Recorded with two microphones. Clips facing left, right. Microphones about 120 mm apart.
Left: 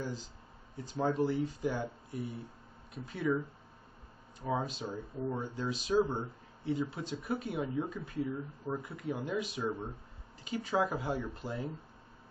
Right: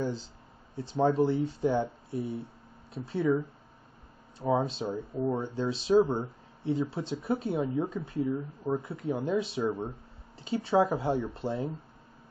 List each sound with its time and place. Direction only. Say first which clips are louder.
0.0 s speech: right 7 dB; 30° right (ahead or behind)
4.4 s speech: right 7 dB; 30° right (ahead or behind)